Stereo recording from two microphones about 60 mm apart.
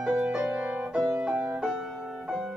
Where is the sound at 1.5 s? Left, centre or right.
Centre.